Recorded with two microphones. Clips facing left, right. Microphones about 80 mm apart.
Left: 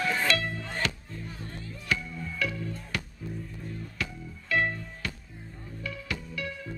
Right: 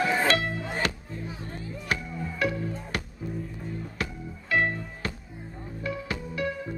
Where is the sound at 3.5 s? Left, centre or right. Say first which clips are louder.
Right 3 dB; right.